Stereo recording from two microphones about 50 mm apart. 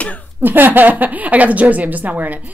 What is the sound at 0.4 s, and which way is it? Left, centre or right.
A woman's voice, right.